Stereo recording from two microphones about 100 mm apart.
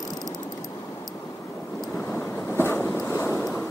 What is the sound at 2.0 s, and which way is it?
Vehicle, 25° left (ahead or behind).